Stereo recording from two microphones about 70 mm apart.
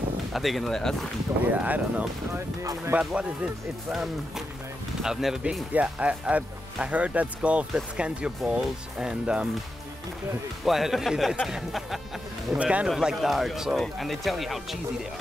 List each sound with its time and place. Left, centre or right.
0.3 s speech: centre
1.4 s speech: right
2.3 s speech: right
3.0 s speech: centre
5.7 s speech: centre
10.6 s speech: centre
12.5 s speech: centre
12.8 s speech: centre